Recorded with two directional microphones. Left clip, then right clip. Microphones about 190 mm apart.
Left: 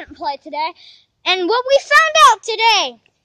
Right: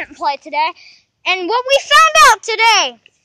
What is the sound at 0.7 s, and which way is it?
Speech, 15° left (ahead or behind).